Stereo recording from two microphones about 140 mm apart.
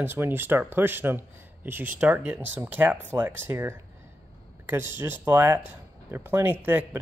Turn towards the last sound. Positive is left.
turn(degrees=-15)  # may be behind; listen again after turning